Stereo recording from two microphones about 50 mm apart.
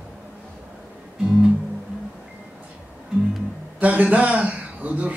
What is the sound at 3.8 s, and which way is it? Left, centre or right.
Speech, right.